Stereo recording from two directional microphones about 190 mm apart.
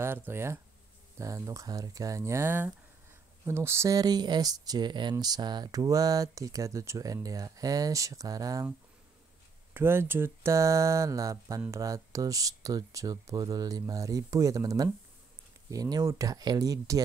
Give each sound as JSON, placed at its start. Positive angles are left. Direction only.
{"t": 0.0, "sound": "speech", "side_deg": -10}
{"t": 9.8, "sound": "speech", "side_deg": -10}